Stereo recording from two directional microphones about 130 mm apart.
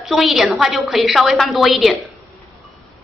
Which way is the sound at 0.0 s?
Centre (ahead or behind).